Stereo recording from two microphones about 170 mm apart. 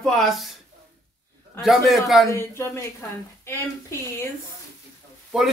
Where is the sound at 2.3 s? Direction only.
15° left (ahead or behind).